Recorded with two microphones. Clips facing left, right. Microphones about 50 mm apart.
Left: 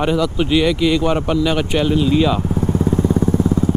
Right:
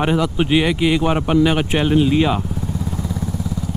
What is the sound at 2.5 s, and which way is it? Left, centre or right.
Vehicle, left.